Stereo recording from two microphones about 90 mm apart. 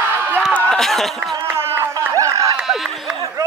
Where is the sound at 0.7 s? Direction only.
5° left (ahead or behind).